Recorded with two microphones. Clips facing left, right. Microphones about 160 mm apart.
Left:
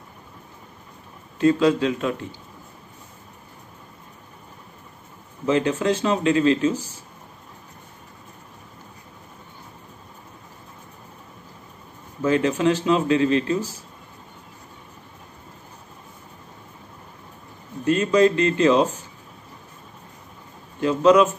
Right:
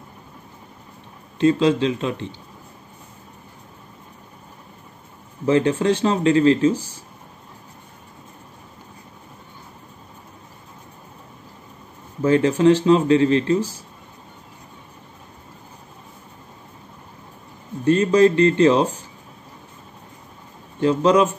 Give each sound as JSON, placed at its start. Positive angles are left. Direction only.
{"t": 1.4, "sound": "speech", "side_deg": -25}
{"t": 5.5, "sound": "speech", "side_deg": -30}
{"t": 12.2, "sound": "speech", "side_deg": -30}
{"t": 17.8, "sound": "speech", "side_deg": -35}
{"t": 20.8, "sound": "speech", "side_deg": -30}